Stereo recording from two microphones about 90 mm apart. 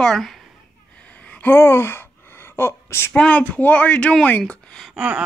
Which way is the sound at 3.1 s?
15° left (ahead or behind).